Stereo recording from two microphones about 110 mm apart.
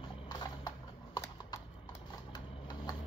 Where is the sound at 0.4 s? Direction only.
40° left (ahead or behind).